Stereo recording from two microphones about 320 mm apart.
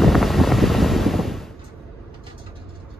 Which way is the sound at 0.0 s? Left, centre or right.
Centre.